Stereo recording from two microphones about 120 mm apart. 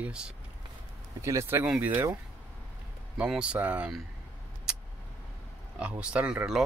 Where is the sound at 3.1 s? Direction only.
10° right (ahead or behind).